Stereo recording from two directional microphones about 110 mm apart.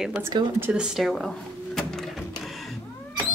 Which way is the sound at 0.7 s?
5° right (ahead or behind).